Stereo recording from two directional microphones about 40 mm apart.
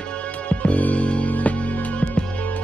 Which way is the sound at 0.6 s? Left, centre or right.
Left.